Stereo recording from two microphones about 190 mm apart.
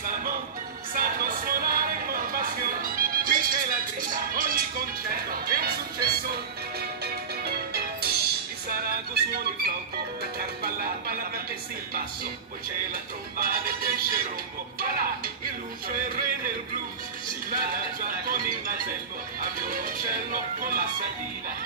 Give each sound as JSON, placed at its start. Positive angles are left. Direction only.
{"t": 0.0, "sound": "music", "side_deg": -45}
{"t": 12.9, "sound": "music", "side_deg": -50}
{"t": 17.6, "sound": "music", "side_deg": -50}